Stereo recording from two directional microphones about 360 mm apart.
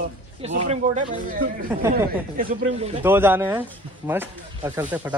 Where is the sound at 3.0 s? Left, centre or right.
Centre.